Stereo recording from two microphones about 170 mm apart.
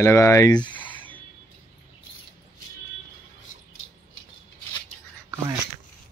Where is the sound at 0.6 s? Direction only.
10° left (ahead or behind).